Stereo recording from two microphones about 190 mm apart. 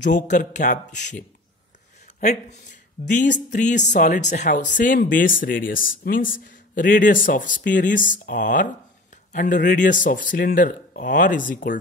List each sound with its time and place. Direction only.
0.0 s speech: 40° left (ahead or behind)
3.1 s speech: 40° left (ahead or behind)